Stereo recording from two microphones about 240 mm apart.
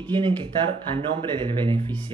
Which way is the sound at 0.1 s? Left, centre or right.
Centre.